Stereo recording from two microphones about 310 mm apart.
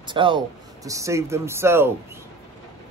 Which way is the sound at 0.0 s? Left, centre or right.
Centre.